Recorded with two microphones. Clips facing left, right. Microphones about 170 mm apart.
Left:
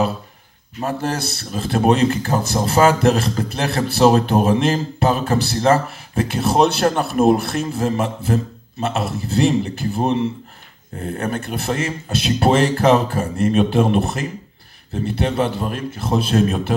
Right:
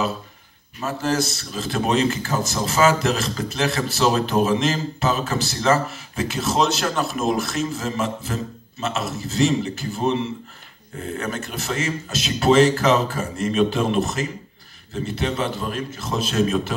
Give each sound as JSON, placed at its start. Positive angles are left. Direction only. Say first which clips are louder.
{"t": 0.8, "sound": "a man's voice", "louder": "even", "side_deg": 55}
{"t": 11.1, "sound": "a man's voice", "louder": "left 5 dB", "side_deg": 55}